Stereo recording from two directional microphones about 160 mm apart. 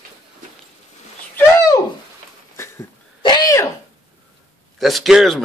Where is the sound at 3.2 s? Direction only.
25° left (ahead or behind).